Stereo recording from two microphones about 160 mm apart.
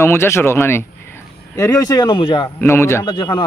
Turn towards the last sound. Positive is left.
turn(degrees=25)  # may be behind; listen again after turning